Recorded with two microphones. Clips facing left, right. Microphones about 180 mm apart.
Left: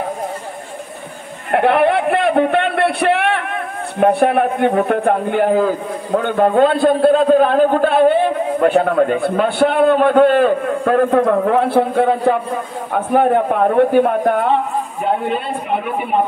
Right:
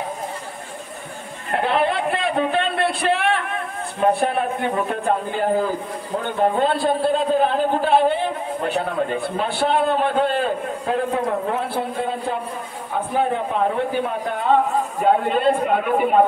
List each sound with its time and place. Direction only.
1.5 s a man's voice: 60° left (ahead or behind)